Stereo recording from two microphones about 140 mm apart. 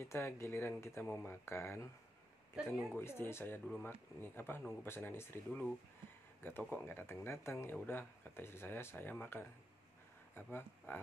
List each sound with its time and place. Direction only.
0.0 s speech: 20° left (ahead or behind)
2.5 s speech: 5° right (ahead or behind)
3.0 s speech: 15° left (ahead or behind)
6.4 s speech: 15° left (ahead or behind)